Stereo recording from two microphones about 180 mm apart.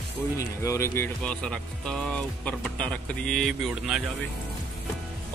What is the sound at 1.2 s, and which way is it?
Speech, 5° left (ahead or behind).